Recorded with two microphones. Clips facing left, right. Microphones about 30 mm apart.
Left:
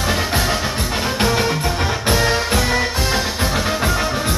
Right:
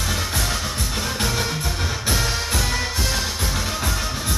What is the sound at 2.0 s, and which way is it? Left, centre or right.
Music, left.